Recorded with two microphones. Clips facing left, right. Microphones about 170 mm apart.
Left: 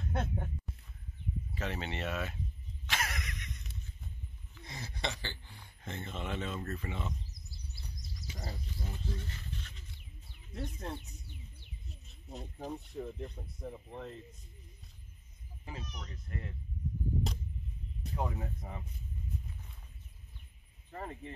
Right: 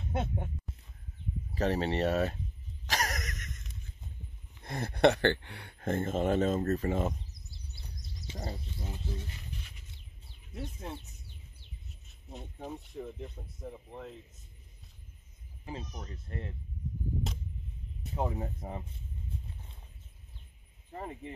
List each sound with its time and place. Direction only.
0.0 s a sound: centre (ahead or behind)
1.5 s speech: 40° right (ahead or behind)
2.9 s a sound: 40° right (ahead or behind)
4.6 s speech: 55° right (ahead or behind)
8.3 s speech: 25° right (ahead or behind)
10.5 s speech: 5° right (ahead or behind)
12.3 s speech: centre (ahead or behind)
15.6 s speech: 30° right (ahead or behind)
18.1 s speech: 25° right (ahead or behind)
20.9 s speech: 15° right (ahead or behind)